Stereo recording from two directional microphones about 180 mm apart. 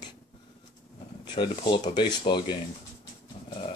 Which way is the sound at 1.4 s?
25° left (ahead or behind).